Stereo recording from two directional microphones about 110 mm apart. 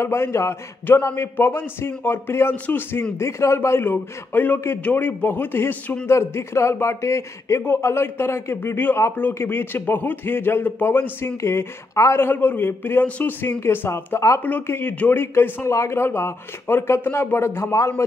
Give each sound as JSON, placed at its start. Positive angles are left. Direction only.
{"t": 0.0, "sound": "a man's voice", "side_deg": 25}